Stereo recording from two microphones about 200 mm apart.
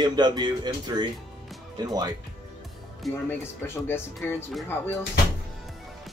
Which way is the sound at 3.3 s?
10° left (ahead or behind).